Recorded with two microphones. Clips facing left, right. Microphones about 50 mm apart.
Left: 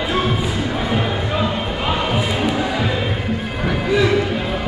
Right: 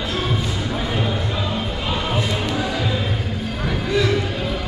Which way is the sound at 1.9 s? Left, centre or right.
Centre.